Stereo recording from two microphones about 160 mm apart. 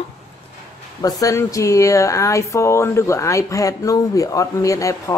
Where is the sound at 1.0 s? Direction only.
20° left (ahead or behind).